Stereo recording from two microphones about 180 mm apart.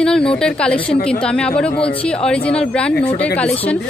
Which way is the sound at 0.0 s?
5° left (ahead or behind).